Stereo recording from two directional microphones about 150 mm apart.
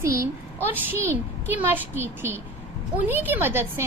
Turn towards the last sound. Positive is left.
turn(degrees=-15)  # may be behind; listen again after turning